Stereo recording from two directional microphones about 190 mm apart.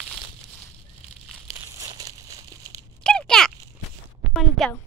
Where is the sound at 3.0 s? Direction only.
5° left (ahead or behind).